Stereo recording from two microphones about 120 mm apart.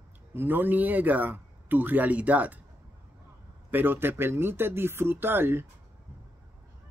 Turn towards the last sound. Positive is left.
turn(degrees=-20)  # may be behind; listen again after turning